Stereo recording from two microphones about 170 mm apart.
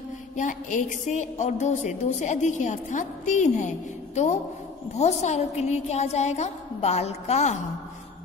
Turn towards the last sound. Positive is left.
turn(degrees=40)  # may be behind; listen again after turning